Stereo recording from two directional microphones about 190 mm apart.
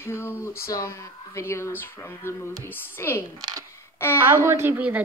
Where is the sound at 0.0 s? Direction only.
15° left (ahead or behind).